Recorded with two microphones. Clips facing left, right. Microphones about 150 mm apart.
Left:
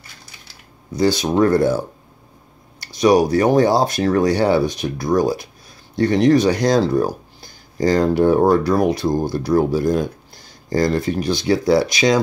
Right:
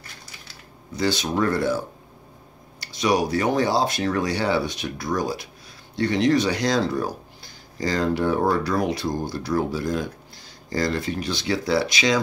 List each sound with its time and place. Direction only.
0.9 s speech: 40° left (ahead or behind)
2.8 s speech: 45° left (ahead or behind)